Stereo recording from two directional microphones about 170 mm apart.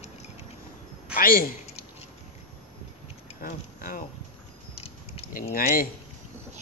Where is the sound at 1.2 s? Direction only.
60° left (ahead or behind).